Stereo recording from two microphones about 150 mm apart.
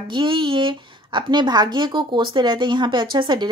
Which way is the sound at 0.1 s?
35° right (ahead or behind).